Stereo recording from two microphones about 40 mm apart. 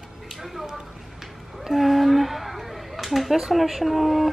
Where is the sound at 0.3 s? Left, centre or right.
Centre.